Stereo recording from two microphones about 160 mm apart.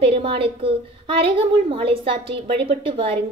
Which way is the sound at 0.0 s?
35° right (ahead or behind).